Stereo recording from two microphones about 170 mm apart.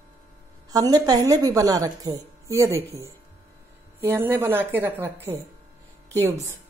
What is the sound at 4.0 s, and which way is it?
A woman's voice, 15° right (ahead or behind).